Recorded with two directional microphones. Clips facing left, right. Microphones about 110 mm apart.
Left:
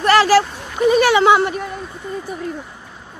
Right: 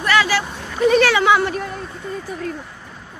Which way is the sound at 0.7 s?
10° left (ahead or behind).